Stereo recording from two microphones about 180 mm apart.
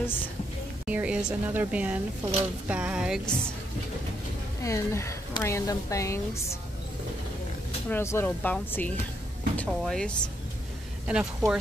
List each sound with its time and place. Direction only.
0.0 s speech: 10° left (ahead or behind)
0.8 s a woman's voice: 5° right (ahead or behind)
4.6 s speech: 15° left (ahead or behind)
7.9 s a woman's voice: 15° left (ahead or behind); by 11.5 s 5° right (ahead or behind)